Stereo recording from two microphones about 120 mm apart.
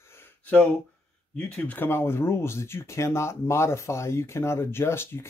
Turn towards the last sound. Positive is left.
turn(degrees=20)  # may be behind; listen again after turning